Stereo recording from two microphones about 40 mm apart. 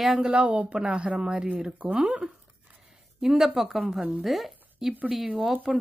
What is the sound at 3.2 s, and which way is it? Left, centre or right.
Speech, centre.